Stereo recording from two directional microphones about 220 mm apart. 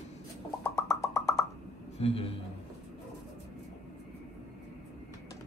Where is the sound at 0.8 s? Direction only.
15° left (ahead or behind).